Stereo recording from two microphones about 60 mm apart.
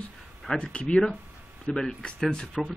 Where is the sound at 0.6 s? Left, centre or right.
Centre.